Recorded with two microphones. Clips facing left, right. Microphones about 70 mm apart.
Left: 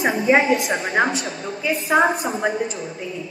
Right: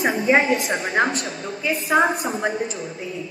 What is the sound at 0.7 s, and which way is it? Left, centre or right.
Speech, left.